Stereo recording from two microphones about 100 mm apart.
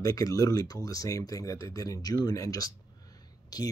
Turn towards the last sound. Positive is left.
turn(degrees=40)  # may be behind; listen again after turning